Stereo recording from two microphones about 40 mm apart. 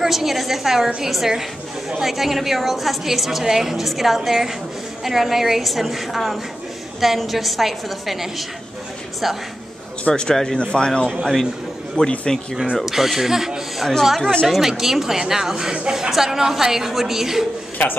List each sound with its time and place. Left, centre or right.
0.0 s a woman's voice: centre
0.8 s a woman's voice: centre
10.1 s speech: centre
10.6 s a man's voice: left
12.0 s a man's voice: left
12.7 s a woman's voice: centre
13.7 s a woman's voice: centre